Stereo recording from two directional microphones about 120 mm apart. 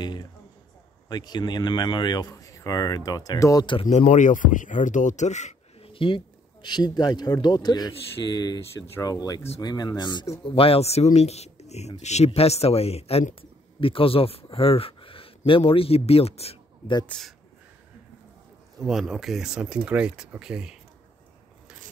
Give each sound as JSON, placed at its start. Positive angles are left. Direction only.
{"t": 0.0, "sound": "speech", "side_deg": 40}
{"t": 3.8, "sound": "a man's voice", "side_deg": 80}
{"t": 5.9, "sound": "speech", "side_deg": 45}
{"t": 10.4, "sound": "a man's voice", "side_deg": 50}
{"t": 17.1, "sound": "speech", "side_deg": 10}
{"t": 18.8, "sound": "speech", "side_deg": 0}